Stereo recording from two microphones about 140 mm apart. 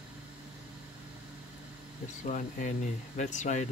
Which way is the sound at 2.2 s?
60° left (ahead or behind).